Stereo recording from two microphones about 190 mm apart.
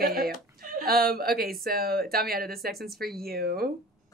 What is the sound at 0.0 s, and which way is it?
Speech, 50° right (ahead or behind).